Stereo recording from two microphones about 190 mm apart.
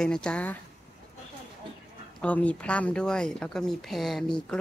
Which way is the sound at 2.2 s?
5° left (ahead or behind).